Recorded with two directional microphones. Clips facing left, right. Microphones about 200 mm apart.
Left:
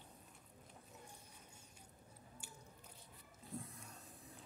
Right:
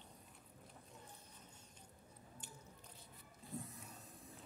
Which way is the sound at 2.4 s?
10° left (ahead or behind).